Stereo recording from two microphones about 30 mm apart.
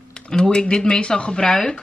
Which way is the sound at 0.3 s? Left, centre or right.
Left.